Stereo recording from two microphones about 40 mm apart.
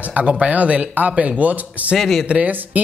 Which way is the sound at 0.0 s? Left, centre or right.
Right.